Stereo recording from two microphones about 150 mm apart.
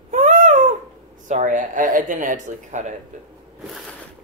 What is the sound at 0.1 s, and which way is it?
Cat, 55° right (ahead or behind).